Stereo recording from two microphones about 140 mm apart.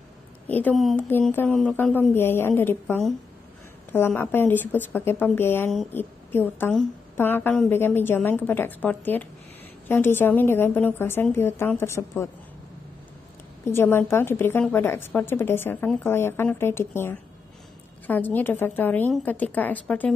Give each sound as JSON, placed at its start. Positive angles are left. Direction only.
{"t": 0.5, "sound": "a woman's voice", "side_deg": 10}
{"t": 0.7, "sound": "a woman's voice", "side_deg": 0}
{"t": 4.1, "sound": "a woman's voice", "side_deg": 15}
{"t": 13.7, "sound": "a woman's voice", "side_deg": 15}